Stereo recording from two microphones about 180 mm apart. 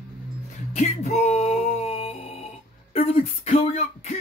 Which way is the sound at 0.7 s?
35° left (ahead or behind).